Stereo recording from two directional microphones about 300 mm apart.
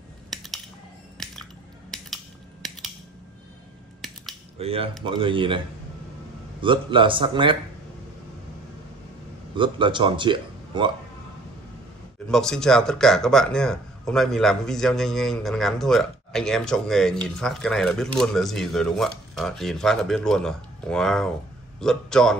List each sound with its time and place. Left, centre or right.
0.3 s a sound: centre
1.1 s squish: centre
2.6 s scissors: centre
4.6 s speech: centre
6.6 s speech: centre
9.6 s speech: centre
12.3 s speech: centre